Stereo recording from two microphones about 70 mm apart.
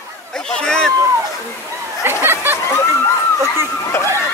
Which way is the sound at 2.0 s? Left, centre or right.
Right.